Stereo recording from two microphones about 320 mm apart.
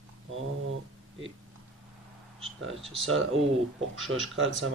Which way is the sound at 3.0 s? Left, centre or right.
Right.